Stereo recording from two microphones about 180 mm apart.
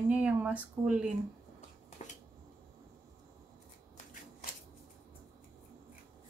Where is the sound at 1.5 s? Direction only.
40° left (ahead or behind).